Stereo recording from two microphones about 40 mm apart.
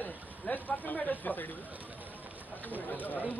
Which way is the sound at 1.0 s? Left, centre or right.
Left.